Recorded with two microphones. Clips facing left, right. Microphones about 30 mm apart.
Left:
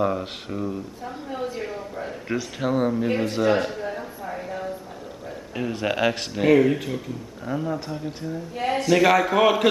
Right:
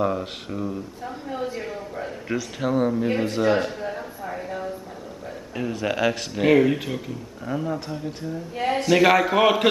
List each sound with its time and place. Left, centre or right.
0.0 s a man's voice: centre
5.6 s speech: centre
6.3 s a man's voice: centre
8.7 s a man's voice: centre